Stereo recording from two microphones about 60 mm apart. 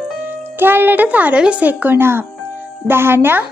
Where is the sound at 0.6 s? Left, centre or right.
Right.